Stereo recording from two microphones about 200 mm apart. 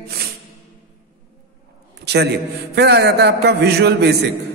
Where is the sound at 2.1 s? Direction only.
55° right (ahead or behind).